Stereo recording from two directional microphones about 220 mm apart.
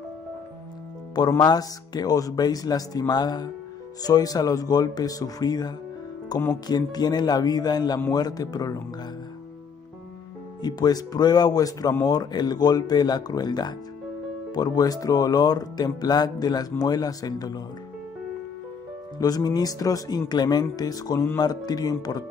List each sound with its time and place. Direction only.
1.1 s speech: 20° left (ahead or behind)
10.6 s speech: 15° left (ahead or behind)
19.1 s speech: 15° left (ahead or behind)